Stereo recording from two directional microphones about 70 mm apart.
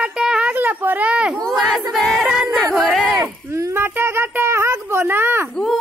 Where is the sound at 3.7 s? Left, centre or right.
Right.